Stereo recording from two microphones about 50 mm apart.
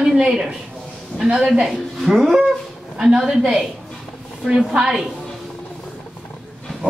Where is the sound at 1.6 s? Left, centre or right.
Centre.